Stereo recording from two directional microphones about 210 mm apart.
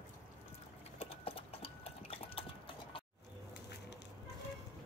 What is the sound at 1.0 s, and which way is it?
Clip-clop, 25° left (ahead or behind).